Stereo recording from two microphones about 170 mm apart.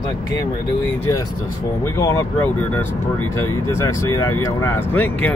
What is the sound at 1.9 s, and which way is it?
Speech, 15° left (ahead or behind).